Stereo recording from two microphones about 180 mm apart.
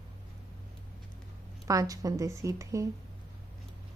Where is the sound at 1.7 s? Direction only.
20° right (ahead or behind).